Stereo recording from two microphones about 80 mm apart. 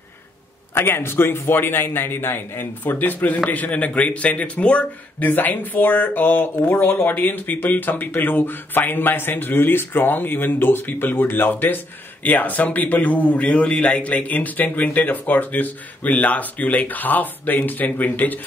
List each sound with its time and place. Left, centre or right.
0.7 s speech: left